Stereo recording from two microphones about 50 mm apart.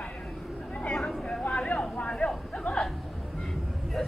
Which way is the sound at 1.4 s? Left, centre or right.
Left.